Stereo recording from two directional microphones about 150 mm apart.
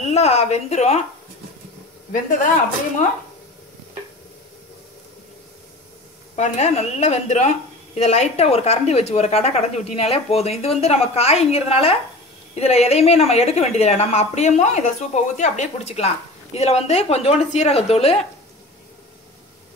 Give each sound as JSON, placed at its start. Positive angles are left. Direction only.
{"t": 0.0, "sound": "a woman's voice", "side_deg": 45}
{"t": 6.3, "sound": "a woman's voice", "side_deg": 50}